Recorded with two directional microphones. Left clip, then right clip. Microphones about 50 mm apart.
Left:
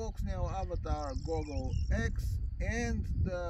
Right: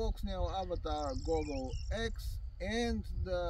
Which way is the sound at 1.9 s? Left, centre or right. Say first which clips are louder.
Left 1 dB; centre.